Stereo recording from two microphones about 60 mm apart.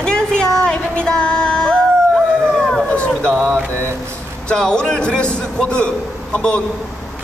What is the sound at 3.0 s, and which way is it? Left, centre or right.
A woman's voice, centre.